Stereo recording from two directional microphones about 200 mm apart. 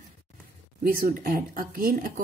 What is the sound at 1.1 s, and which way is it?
A woman's voice, 45° right (ahead or behind).